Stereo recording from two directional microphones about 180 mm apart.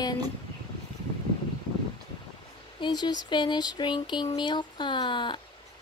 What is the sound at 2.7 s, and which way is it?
Speech, 25° left (ahead or behind).